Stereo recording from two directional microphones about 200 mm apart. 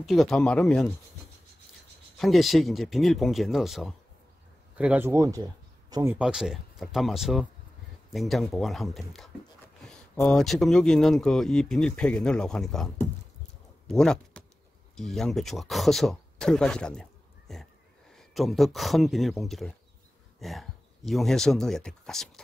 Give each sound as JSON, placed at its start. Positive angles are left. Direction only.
{"t": 0.0, "sound": "speech", "side_deg": 0}
{"t": 2.1, "sound": "speech", "side_deg": 0}
{"t": 6.1, "sound": "speech", "side_deg": -5}